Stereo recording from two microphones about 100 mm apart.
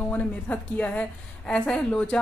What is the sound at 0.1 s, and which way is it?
A woman's voice, 15° left (ahead or behind).